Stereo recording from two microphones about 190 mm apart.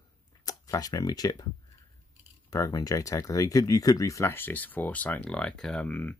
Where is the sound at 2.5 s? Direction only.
20° left (ahead or behind).